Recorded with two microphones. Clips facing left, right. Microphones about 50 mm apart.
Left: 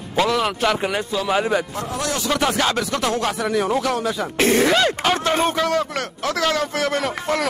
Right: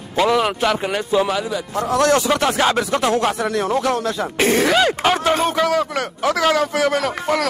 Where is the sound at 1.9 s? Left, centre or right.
Right.